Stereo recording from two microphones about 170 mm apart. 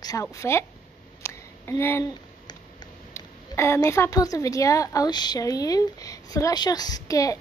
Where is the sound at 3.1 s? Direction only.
15° left (ahead or behind).